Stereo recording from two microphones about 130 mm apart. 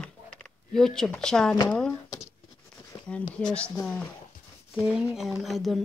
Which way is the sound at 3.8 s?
10° left (ahead or behind).